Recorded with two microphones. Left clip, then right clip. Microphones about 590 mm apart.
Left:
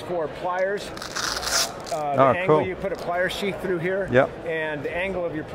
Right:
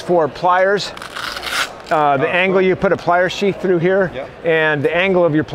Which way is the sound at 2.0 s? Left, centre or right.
Right.